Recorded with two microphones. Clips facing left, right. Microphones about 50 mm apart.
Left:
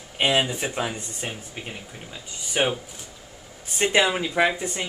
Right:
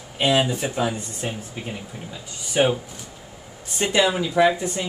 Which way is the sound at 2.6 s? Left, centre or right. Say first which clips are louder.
Right 4 dB; left.